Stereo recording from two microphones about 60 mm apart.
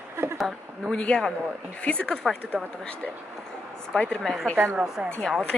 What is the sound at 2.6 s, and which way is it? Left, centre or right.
Speech, centre.